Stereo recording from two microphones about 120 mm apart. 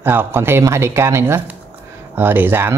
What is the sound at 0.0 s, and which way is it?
Speech, 20° right (ahead or behind).